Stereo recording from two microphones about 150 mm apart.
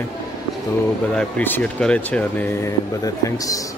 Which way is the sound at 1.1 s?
10° left (ahead or behind).